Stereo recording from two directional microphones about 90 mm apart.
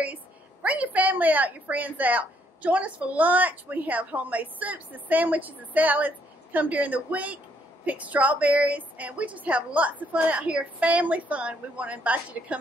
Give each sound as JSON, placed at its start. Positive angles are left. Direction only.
{"t": 0.0, "sound": "a woman's voice", "side_deg": -15}